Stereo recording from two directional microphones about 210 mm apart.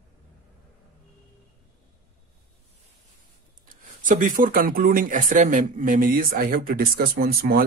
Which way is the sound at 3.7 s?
40° right (ahead or behind).